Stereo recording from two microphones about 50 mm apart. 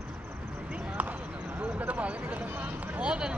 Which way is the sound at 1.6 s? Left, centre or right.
Right.